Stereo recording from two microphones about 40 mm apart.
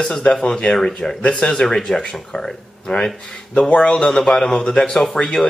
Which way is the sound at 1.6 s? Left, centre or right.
Centre.